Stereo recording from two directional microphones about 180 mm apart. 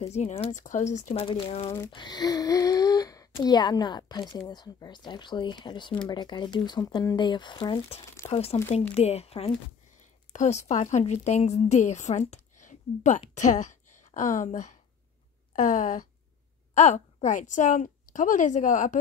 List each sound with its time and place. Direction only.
0.0 s a woman's voice: 40° left (ahead or behind)